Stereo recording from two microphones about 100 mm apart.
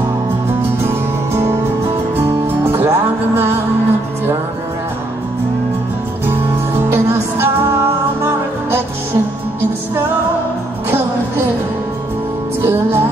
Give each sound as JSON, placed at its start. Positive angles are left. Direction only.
{"t": 0.8, "sound": "music", "side_deg": -25}
{"t": 6.2, "sound": "music", "side_deg": -20}
{"t": 12.6, "sound": "music", "side_deg": -25}